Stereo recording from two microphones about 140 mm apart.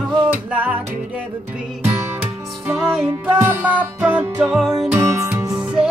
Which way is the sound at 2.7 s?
5° right (ahead or behind).